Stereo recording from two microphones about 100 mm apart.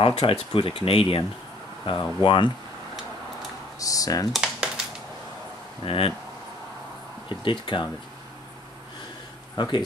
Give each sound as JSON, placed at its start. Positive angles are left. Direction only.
{"t": 0.0, "sound": "speech", "side_deg": 65}
{"t": 1.9, "sound": "speech", "side_deg": 55}
{"t": 3.8, "sound": "speech", "side_deg": 35}
{"t": 4.3, "sound": "a sound", "side_deg": -10}
{"t": 5.9, "sound": "speech", "side_deg": 70}
{"t": 7.2, "sound": "speech", "side_deg": 55}
{"t": 9.6, "sound": "speech", "side_deg": 50}